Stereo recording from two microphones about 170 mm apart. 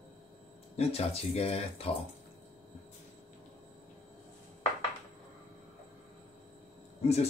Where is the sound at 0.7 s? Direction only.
35° left (ahead or behind).